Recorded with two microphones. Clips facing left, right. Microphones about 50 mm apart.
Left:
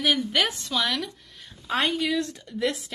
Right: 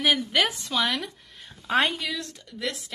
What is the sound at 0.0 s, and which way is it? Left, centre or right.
Speech, centre.